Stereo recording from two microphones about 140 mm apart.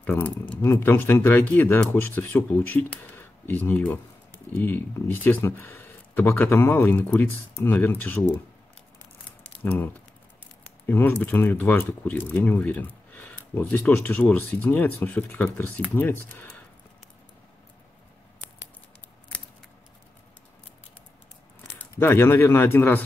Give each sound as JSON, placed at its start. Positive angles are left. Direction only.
{"t": 0.0, "sound": "speech", "side_deg": 10}
{"t": 9.6, "sound": "speech", "side_deg": 10}
{"t": 10.9, "sound": "speech", "side_deg": 15}
{"t": 21.7, "sound": "speech", "side_deg": 15}